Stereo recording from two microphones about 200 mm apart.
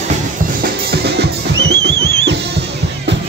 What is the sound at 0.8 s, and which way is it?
Music, 55° right (ahead or behind).